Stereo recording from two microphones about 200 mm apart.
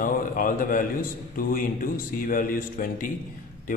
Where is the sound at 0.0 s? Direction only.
45° left (ahead or behind).